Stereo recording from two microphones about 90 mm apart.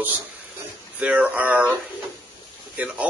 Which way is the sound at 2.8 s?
15° right (ahead or behind).